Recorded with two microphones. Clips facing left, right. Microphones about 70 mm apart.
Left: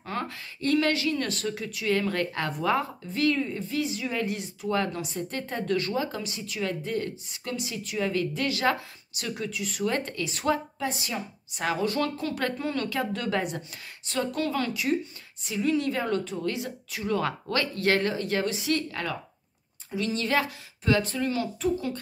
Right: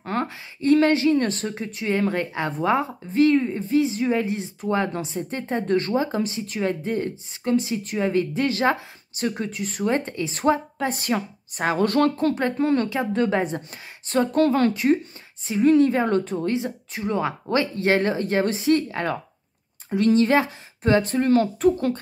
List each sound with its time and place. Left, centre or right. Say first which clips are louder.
0.0 s a sound: right 6 dB; right
0.6 s speech: right 7 dB; right
9.9 s speech: right 5 dB; right
10.9 s speech: right 8 dB; right
12.5 s speech: right 7 dB; right
13.6 s speech: right 2 dB; right
19.9 s speech: right 11 dB; right
20.2 s speech: right 6 dB; right